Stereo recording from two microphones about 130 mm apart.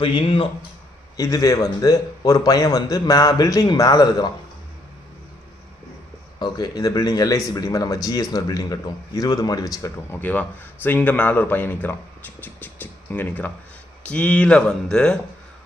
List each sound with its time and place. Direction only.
0.0 s speech: 45° left (ahead or behind)
1.1 s speech: 25° left (ahead or behind)
6.4 s speech: 30° left (ahead or behind); by 15.1 s 10° left (ahead or behind)